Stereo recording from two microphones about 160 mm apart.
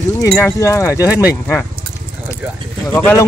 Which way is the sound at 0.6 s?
20° left (ahead or behind).